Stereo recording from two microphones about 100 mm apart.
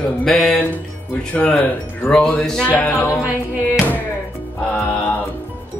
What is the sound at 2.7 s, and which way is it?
Speech, 15° left (ahead or behind).